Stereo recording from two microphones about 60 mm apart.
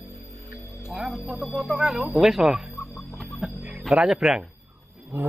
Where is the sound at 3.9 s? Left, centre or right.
Centre.